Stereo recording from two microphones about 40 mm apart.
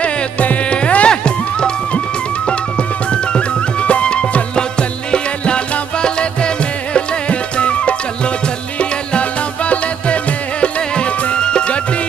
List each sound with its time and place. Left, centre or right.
0.0 s music: left
3.1 s music: left